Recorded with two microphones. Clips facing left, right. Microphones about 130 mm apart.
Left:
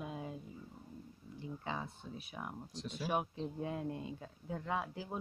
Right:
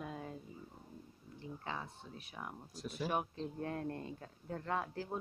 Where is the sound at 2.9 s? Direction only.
10° left (ahead or behind).